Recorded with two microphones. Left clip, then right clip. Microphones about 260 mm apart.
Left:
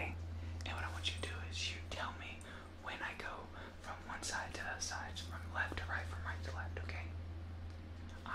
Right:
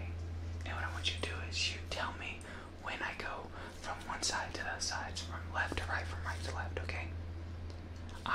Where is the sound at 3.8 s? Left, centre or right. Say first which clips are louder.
Right 8 dB; centre.